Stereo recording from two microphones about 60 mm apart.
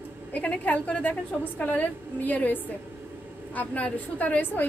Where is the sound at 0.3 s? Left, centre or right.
Left.